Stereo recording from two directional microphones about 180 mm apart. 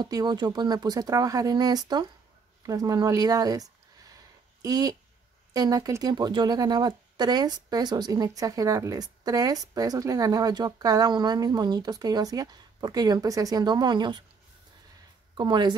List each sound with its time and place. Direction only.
0.0 s speech: 20° right (ahead or behind)
4.1 s a sound: 20° right (ahead or behind)
5.5 s speech: 20° right (ahead or behind)
15.3 s speech: 25° right (ahead or behind)